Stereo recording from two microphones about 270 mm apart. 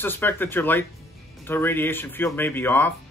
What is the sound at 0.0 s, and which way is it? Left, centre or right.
Speech, centre.